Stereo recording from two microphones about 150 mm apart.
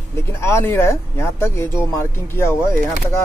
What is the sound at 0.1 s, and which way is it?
Speech, 15° left (ahead or behind).